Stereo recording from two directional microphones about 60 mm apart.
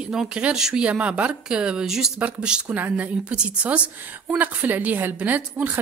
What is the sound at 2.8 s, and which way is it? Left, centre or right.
Speech, right.